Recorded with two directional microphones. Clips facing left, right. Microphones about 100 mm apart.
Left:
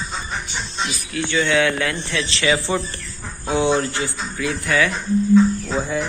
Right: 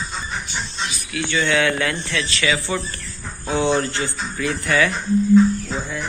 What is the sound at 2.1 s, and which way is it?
Speech, 30° left (ahead or behind).